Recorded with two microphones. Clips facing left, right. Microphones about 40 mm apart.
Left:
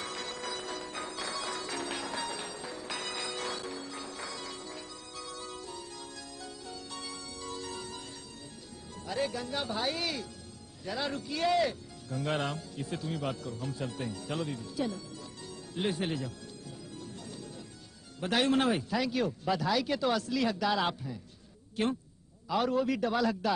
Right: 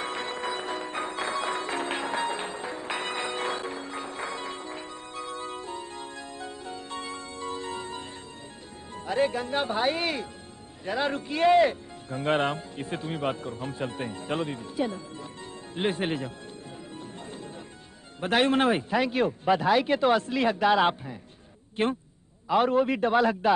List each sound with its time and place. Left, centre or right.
0.0 s music: right
8.9 s a man's voice: right
16.9 s music: right
18.2 s a man's voice: right